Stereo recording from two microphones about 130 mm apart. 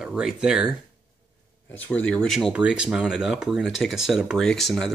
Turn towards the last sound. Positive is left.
turn(degrees=0)  # may be behind; listen again after turning